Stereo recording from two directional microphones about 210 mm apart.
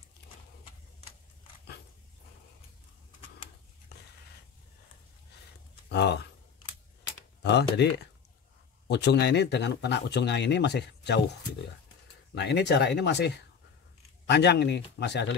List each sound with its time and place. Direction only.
5.9 s speech: 50° left (ahead or behind)
7.4 s speech: 55° left (ahead or behind)